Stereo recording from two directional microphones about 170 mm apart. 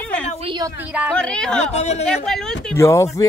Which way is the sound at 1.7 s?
40° left (ahead or behind).